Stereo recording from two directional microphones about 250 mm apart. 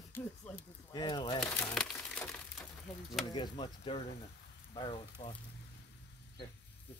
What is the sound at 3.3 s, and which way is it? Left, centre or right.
Speech, centre.